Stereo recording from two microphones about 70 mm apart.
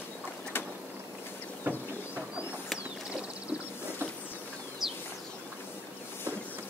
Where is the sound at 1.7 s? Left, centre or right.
Right.